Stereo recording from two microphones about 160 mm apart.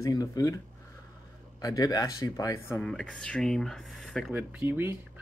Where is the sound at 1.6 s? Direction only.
25° left (ahead or behind).